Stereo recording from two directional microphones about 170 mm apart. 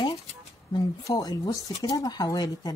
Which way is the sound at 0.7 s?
20° left (ahead or behind).